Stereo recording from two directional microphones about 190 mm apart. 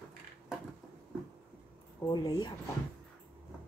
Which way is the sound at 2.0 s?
20° left (ahead or behind).